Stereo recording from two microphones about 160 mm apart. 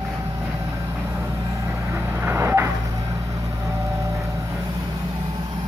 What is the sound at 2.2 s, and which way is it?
Vehicle, 15° right (ahead or behind).